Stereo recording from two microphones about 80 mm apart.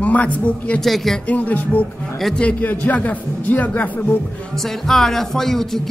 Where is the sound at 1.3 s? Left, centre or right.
Centre.